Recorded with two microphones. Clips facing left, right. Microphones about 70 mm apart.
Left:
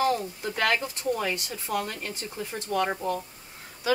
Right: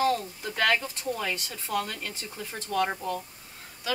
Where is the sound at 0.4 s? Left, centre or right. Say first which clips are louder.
Even; centre.